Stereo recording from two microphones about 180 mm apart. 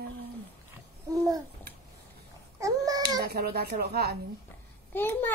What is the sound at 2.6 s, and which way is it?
Babbling, 20° right (ahead or behind).